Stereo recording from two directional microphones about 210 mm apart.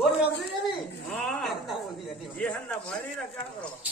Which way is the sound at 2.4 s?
5° left (ahead or behind).